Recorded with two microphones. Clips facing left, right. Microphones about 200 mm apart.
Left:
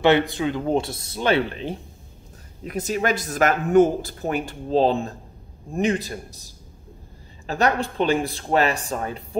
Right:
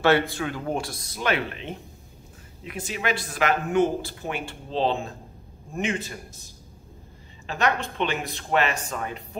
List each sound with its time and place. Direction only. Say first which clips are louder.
0.0 s speech: left 3 dB; 20° left (ahead or behind); by 9.4 s 35° left (ahead or behind)